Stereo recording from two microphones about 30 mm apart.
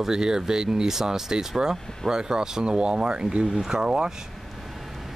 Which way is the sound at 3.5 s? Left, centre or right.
Right.